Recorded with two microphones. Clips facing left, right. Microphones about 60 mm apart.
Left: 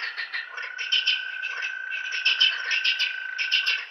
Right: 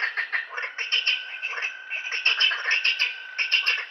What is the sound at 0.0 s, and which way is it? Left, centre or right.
Frog, right.